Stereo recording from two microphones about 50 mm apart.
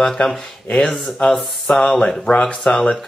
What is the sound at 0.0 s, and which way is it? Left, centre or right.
Speech, centre.